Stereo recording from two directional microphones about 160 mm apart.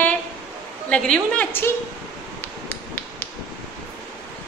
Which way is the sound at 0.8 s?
5° left (ahead or behind).